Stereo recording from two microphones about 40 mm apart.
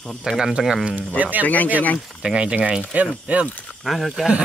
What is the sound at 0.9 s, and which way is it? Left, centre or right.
Speech, right.